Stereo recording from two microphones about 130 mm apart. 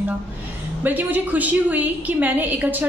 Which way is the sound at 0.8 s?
15° right (ahead or behind).